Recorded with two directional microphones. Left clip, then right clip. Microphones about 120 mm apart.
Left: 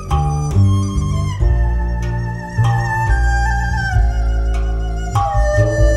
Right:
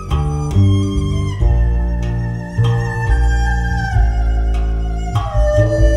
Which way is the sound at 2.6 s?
15° right (ahead or behind).